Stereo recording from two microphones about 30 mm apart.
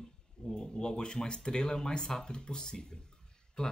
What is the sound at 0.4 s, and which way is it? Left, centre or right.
Speech, left.